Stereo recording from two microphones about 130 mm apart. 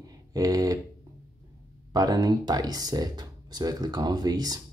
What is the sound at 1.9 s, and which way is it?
Speech, 30° right (ahead or behind).